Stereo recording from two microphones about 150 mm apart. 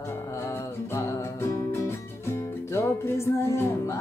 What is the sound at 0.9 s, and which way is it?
Music, 20° left (ahead or behind).